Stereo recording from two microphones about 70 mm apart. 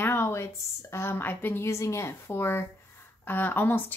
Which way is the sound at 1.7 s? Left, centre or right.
Left.